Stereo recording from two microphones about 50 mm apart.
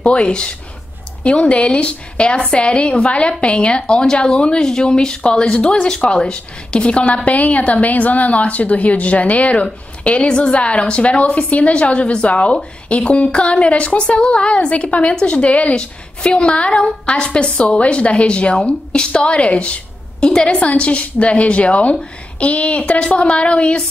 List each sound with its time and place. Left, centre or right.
0.0 s a woman's voice: left